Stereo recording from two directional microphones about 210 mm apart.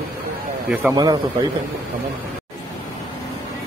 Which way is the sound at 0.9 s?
20° right (ahead or behind).